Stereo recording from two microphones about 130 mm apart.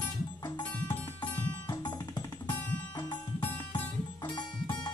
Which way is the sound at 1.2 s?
35° left (ahead or behind).